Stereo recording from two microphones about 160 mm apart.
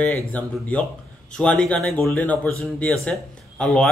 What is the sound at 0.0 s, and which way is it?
A man's voice, 10° left (ahead or behind).